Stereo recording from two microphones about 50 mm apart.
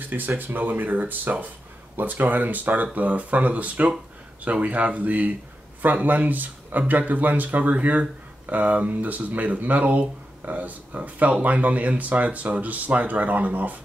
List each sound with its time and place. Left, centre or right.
0.4 s speech: right